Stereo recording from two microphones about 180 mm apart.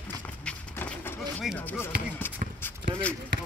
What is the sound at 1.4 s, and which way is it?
Speech, 10° left (ahead or behind).